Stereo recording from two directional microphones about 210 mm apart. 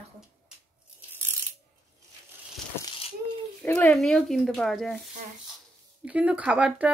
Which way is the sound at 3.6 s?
5° left (ahead or behind).